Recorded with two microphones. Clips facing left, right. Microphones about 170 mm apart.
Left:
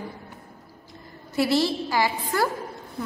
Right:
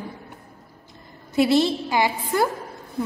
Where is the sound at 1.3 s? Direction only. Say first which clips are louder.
Right 4 dB; 20° right (ahead or behind).